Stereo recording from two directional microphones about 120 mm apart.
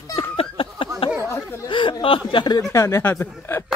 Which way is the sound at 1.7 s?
45° left (ahead or behind).